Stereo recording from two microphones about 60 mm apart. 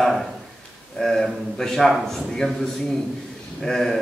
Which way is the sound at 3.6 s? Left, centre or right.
Centre.